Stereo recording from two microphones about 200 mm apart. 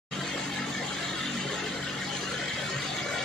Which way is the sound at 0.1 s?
Centre (ahead or behind).